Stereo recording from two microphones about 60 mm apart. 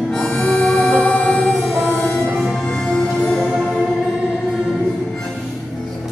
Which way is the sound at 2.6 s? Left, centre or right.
Centre.